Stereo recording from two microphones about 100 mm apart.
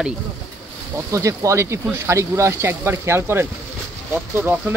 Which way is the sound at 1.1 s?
30° right (ahead or behind).